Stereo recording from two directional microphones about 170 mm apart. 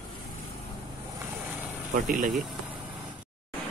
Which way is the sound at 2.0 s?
55° right (ahead or behind).